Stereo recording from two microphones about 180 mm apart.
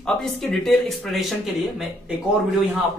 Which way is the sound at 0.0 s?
Centre (ahead or behind).